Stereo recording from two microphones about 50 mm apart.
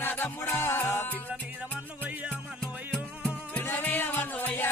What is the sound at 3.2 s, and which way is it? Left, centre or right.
Music, left.